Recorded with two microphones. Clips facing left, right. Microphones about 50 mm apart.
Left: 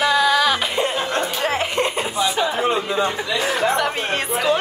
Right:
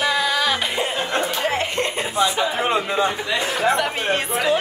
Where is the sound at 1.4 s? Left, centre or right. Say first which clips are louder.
Left 1 dB; centre.